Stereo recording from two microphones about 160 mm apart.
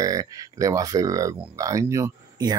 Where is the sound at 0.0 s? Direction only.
20° right (ahead or behind).